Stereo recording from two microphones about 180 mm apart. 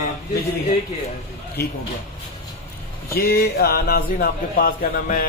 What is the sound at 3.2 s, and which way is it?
A man's voice, 60° left (ahead or behind).